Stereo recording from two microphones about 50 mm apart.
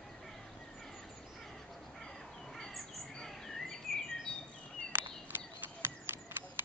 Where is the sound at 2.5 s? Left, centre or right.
Centre.